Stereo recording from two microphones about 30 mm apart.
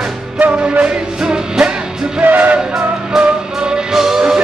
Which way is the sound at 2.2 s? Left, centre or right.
Right.